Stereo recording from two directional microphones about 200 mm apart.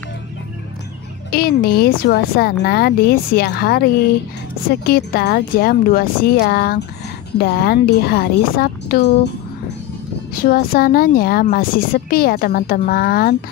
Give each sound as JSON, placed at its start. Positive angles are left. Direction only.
{"t": 1.3, "sound": "speech", "side_deg": 50}
{"t": 10.4, "sound": "speech", "side_deg": 45}